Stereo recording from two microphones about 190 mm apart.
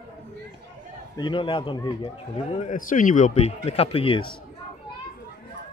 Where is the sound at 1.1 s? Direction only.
25° left (ahead or behind).